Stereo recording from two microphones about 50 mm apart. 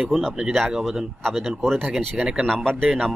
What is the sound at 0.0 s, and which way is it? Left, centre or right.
Speech, centre.